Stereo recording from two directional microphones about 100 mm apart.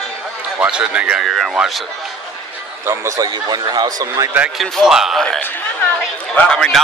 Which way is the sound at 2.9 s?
35° right (ahead or behind).